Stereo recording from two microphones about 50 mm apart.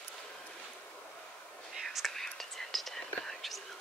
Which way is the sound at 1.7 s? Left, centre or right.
Centre.